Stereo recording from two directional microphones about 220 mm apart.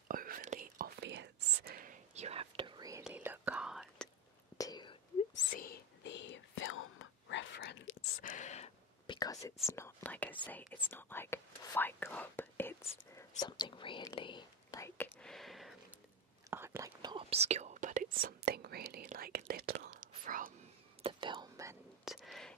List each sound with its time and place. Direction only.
0.1 s whispering: 40° right (ahead or behind); by 3.0 s 20° right (ahead or behind)
3.0 s whispering: 10° right (ahead or behind)
4.6 s whispering: 20° left (ahead or behind)
5.3 s whispering: 50° left (ahead or behind)
8.2 s whispering: 35° left (ahead or behind); by 9.5 s 15° left (ahead or behind)
9.7 s speech: 10° left (ahead or behind)
13.4 s whispering: 20° left (ahead or behind)
15.2 s a sound: centre (ahead or behind)
16.4 s whispering: 10° right (ahead or behind); by 20.5 s 40° right (ahead or behind)
21.0 s whispering: 20° right (ahead or behind)
22.0 s a sound: centre (ahead or behind)